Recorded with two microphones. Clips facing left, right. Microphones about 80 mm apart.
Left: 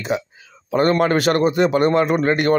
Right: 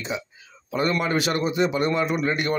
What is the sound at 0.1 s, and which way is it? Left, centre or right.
A man's voice, left.